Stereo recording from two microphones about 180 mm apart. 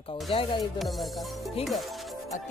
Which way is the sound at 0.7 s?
Centre (ahead or behind).